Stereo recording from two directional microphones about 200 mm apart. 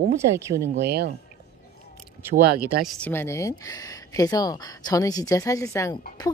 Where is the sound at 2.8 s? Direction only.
5° left (ahead or behind).